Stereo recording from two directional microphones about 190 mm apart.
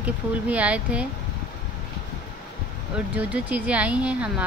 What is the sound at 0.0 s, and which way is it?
Speech, 10° right (ahead or behind).